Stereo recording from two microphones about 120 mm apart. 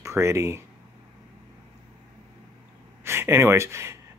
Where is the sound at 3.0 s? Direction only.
20° right (ahead or behind).